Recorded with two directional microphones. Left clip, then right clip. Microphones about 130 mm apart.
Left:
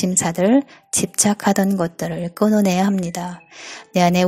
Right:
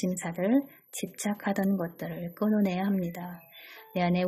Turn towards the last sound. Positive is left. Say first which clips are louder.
# left 12 dB
turn(degrees=40)  # may be behind; listen again after turning